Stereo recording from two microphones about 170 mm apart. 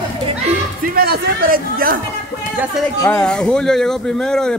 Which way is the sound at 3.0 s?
10° left (ahead or behind).